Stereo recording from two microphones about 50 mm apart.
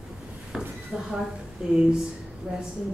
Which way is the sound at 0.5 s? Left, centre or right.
Centre.